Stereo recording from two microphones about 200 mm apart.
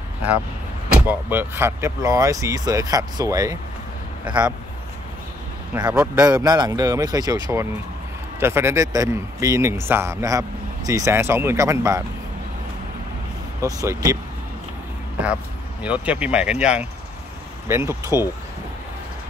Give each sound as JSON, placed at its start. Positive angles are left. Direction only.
{"t": 1.0, "sound": "speech", "side_deg": -10}
{"t": 4.3, "sound": "speech", "side_deg": -5}
{"t": 5.8, "sound": "speech", "side_deg": -20}
{"t": 13.6, "sound": "speech", "side_deg": -15}
{"t": 15.8, "sound": "speech", "side_deg": -5}